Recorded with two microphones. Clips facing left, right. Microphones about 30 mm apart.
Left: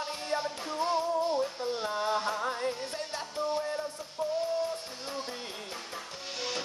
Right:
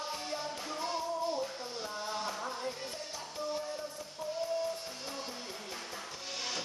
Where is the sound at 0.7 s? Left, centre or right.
Centre.